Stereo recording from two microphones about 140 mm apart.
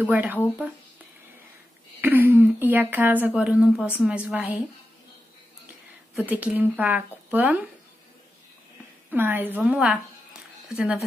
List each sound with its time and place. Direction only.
0.0 s speech: 10° right (ahead or behind)
2.0 s a woman's voice: 15° right (ahead or behind)
6.1 s speech: 10° right (ahead or behind)
9.1 s speech: 15° right (ahead or behind)